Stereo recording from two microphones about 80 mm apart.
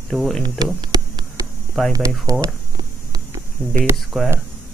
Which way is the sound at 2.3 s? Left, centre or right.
Right.